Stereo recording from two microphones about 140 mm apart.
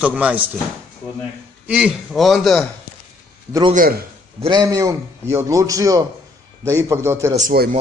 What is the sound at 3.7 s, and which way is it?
Speech, 90° right.